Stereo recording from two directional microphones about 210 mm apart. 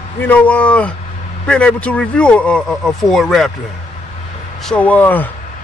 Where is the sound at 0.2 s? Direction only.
5° left (ahead or behind).